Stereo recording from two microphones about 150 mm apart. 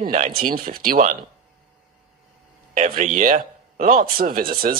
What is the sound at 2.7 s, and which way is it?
Speech, 60° right (ahead or behind).